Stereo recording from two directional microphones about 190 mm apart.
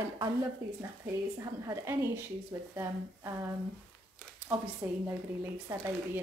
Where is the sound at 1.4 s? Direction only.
15° right (ahead or behind).